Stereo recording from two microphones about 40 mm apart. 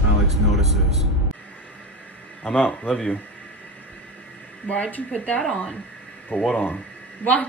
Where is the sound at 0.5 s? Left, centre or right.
Centre.